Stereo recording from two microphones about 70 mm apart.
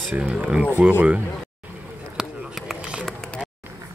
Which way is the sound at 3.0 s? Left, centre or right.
Centre.